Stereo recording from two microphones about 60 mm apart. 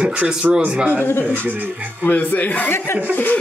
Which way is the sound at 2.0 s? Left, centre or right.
Left.